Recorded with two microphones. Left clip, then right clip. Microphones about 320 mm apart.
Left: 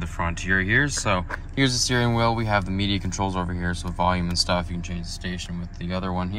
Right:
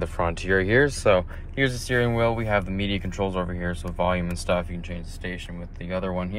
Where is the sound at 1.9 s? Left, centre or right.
Centre.